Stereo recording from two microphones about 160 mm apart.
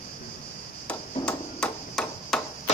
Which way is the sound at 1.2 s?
5° left (ahead or behind).